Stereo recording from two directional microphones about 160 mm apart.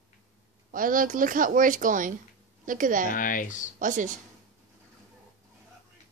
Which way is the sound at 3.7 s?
55° right (ahead or behind).